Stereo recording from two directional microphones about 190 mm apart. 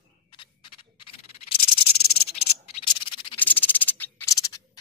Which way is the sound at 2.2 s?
30° left (ahead or behind).